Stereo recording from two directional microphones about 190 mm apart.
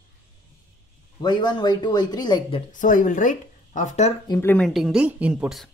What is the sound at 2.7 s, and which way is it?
Speech, 45° left (ahead or behind).